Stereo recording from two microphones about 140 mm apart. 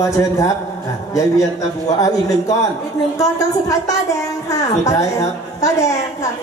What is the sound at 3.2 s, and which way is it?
A woman's voice, 25° left (ahead or behind).